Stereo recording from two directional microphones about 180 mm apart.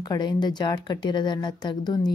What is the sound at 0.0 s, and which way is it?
Speech, 20° left (ahead or behind).